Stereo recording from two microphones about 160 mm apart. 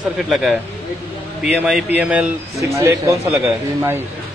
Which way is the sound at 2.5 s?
20° right (ahead or behind).